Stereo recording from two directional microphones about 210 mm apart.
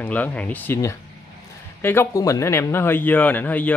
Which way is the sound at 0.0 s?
5° left (ahead or behind).